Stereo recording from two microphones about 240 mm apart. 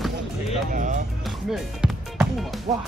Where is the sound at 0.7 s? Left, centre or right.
Right.